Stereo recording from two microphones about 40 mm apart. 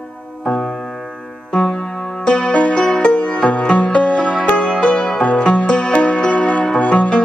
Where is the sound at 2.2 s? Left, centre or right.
Left.